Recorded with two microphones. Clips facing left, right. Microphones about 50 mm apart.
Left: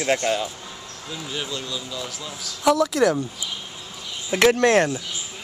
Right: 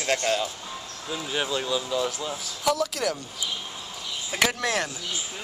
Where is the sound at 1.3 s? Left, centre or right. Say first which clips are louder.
Right 4 dB; right.